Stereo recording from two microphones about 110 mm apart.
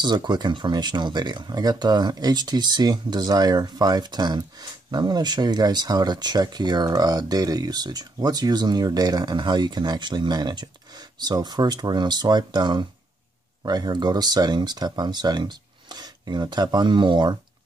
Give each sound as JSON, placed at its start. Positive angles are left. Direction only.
{"t": 0.0, "sound": "speech", "side_deg": -40}